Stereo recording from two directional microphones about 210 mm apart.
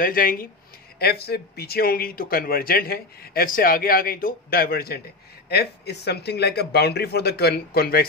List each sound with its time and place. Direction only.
0.0 s speech: 40° left (ahead or behind)